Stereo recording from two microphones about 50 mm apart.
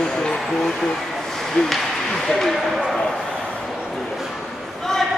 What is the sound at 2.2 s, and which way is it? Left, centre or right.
Speech, centre.